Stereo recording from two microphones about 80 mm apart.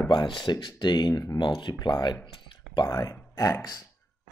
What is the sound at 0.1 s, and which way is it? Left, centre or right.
Speech, left.